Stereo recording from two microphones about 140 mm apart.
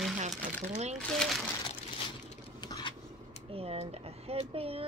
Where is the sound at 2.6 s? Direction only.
30° left (ahead or behind).